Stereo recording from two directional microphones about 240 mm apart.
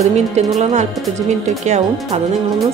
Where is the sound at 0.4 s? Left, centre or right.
Right.